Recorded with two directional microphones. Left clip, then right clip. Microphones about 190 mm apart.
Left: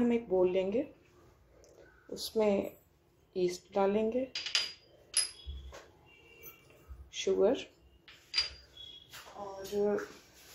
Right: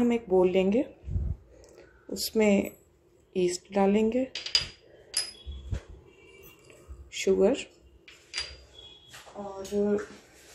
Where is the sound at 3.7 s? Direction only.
20° right (ahead or behind).